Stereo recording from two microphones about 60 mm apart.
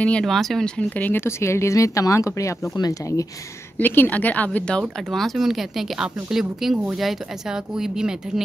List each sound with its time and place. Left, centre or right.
0.2 s speech: centre
0.7 s a woman's voice: left
1.1 s speech: left
3.7 s a woman's voice: left
4.7 s speech: centre